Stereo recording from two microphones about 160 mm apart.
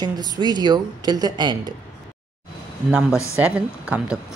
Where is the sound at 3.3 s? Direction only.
5° right (ahead or behind).